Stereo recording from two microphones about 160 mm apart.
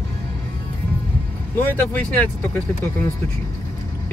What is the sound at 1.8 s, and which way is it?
Speech, 10° left (ahead or behind).